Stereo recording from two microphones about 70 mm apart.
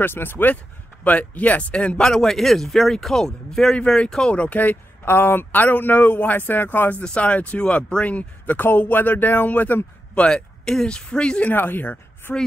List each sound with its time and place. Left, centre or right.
0.0 s speech: left
2.0 s speech: centre; by 10.2 s left
10.2 s speech: centre
11.5 s a woman's voice: left